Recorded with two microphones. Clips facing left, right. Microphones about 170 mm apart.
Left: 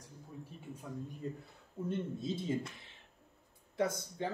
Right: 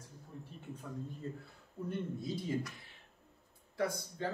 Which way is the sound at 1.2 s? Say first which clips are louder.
Left 2 dB; 15° left (ahead or behind).